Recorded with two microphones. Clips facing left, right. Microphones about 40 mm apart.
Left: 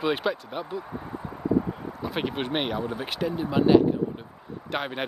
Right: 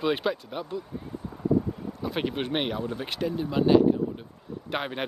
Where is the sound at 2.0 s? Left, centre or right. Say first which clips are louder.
Even; centre.